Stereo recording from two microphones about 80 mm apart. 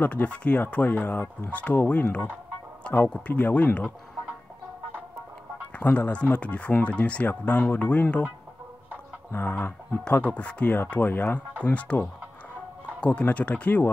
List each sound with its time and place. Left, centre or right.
0.0 s speech: centre
5.8 s speech: centre
9.3 s speech: left